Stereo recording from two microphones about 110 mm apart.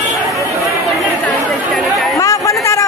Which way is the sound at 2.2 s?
30° left (ahead or behind).